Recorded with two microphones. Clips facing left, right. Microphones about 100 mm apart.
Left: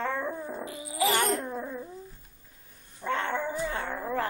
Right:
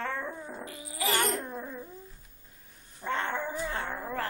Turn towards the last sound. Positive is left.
turn(degrees=0)  # may be behind; listen again after turning